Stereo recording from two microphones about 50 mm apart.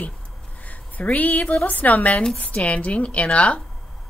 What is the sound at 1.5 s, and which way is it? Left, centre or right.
Speech, left.